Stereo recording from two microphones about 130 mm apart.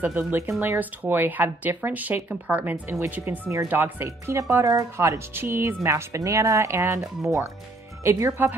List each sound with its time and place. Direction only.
0.0 s speech: 15° right (ahead or behind)